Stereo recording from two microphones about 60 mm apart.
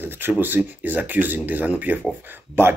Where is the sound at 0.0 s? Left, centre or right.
Right.